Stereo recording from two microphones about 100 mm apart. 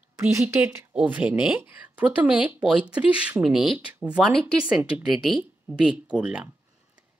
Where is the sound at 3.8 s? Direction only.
15° right (ahead or behind).